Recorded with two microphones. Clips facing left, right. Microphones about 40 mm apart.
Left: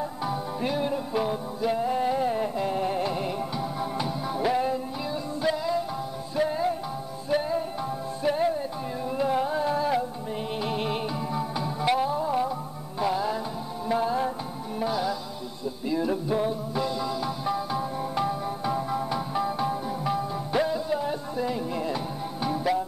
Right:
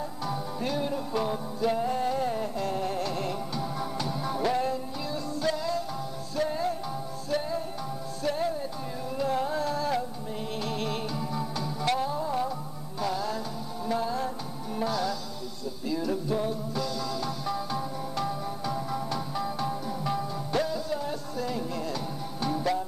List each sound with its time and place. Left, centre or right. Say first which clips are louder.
0.2 s music: left 2 dB; centre